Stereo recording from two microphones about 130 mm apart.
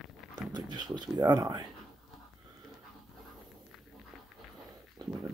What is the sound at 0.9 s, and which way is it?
Speech, 30° right (ahead or behind).